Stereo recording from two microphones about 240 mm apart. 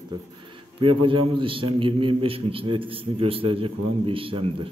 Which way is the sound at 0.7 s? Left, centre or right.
Right.